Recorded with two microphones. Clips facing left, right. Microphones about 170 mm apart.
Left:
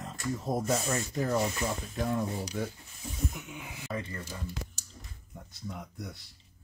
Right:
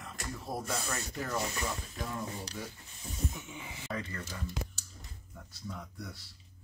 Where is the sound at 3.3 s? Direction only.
15° left (ahead or behind).